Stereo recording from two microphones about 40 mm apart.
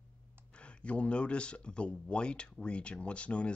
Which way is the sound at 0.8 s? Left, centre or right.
Left.